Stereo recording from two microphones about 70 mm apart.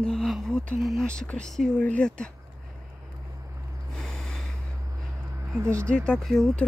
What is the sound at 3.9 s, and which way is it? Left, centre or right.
Snort, centre.